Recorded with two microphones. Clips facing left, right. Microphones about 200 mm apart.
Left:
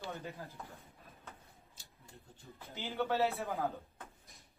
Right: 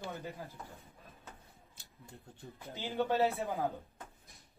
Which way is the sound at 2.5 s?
15° right (ahead or behind).